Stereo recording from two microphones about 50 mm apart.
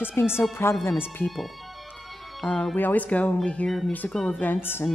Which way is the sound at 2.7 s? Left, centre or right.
Left.